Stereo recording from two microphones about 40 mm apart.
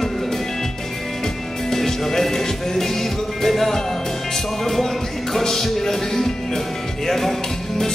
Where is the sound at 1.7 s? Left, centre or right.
Centre.